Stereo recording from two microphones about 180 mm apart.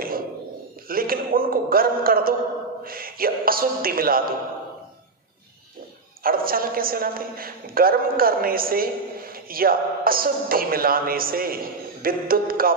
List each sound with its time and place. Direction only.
0.8 s a man's voice: 55° right (ahead or behind)
6.2 s a man's voice: 55° right (ahead or behind)